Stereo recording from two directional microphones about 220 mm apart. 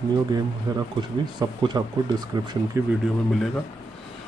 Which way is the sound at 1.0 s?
20° right (ahead or behind).